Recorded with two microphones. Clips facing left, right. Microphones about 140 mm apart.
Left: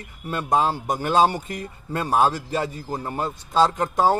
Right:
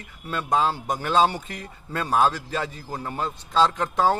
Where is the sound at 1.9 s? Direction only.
15° left (ahead or behind).